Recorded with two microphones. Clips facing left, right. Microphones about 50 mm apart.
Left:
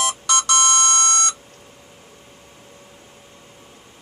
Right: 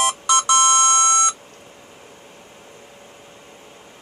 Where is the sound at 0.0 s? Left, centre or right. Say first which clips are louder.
Right 3 dB; centre.